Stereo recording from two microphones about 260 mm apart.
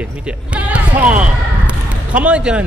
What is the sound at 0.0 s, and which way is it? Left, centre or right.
Speech, centre.